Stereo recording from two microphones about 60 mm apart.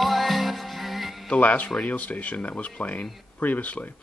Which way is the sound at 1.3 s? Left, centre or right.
Left.